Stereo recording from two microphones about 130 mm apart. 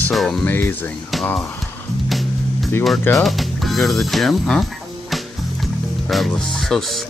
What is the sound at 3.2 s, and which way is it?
Speech, centre (ahead or behind).